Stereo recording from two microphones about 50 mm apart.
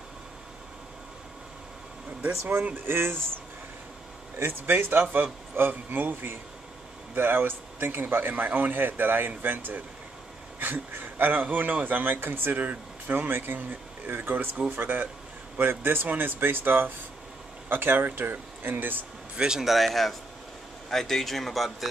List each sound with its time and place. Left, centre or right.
2.2 s speech: right
4.4 s speech: right
19.3 s a man's voice: centre
19.6 s speech: centre